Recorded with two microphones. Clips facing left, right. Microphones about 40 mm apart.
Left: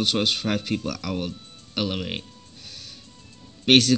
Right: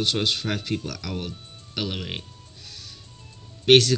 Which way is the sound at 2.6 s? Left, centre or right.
Left.